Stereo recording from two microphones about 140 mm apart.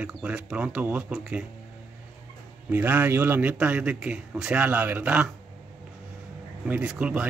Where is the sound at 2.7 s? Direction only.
15° right (ahead or behind).